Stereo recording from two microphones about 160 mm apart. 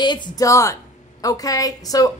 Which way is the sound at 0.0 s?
25° left (ahead or behind).